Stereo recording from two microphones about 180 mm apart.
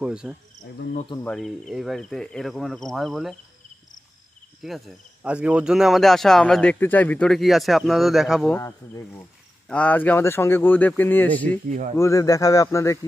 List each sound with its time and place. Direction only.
0.0 s speech: 5° right (ahead or behind)
4.6 s speech: 5° right (ahead or behind)
8.5 s speech: 15° left (ahead or behind)